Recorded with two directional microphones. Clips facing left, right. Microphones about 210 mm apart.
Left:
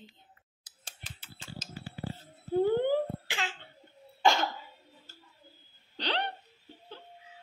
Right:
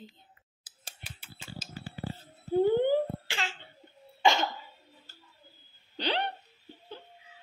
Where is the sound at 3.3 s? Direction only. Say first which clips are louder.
Even; 15° left (ahead or behind).